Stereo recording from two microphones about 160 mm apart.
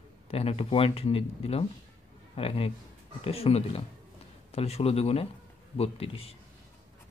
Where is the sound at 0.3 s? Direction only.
40° left (ahead or behind).